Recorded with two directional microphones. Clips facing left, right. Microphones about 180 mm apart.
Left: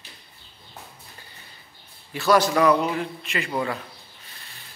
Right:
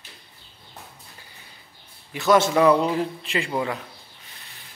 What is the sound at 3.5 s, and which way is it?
Speech, 10° right (ahead or behind).